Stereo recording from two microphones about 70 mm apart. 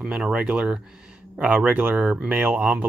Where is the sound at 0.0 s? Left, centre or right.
Centre.